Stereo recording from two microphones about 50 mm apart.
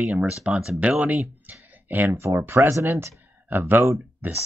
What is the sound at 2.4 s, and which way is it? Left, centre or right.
Speech, right.